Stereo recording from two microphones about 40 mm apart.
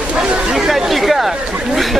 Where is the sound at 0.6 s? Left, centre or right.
Centre.